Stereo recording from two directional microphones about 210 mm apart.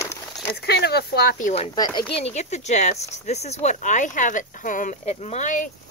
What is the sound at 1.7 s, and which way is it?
Speech, 20° left (ahead or behind).